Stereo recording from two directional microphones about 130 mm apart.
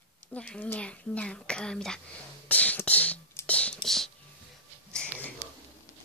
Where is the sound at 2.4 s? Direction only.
10° left (ahead or behind).